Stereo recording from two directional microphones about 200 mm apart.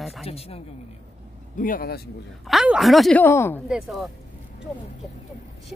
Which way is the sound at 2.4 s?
5° right (ahead or behind).